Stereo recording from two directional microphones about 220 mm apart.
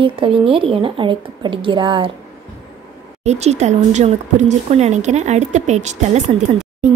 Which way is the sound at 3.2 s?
30° right (ahead or behind).